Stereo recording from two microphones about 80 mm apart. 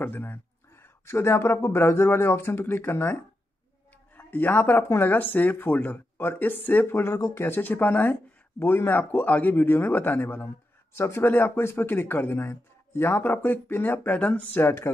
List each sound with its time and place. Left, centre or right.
0.0 s speech: left
4.2 s speech: left
14.6 s speech: left